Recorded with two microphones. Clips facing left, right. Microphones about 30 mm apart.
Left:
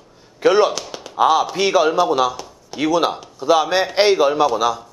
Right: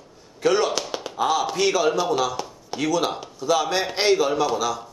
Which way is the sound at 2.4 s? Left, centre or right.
Centre.